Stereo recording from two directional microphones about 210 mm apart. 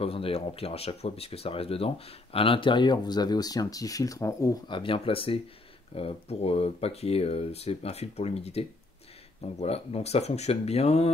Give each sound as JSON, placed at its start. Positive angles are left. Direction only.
{"t": 0.0, "sound": "speech", "side_deg": 25}